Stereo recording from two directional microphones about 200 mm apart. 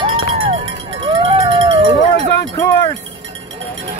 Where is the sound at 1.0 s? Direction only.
25° right (ahead or behind).